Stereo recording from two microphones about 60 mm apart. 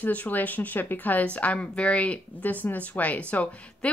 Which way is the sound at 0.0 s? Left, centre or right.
Left.